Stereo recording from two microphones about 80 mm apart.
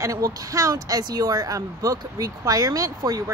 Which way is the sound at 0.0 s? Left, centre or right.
Right.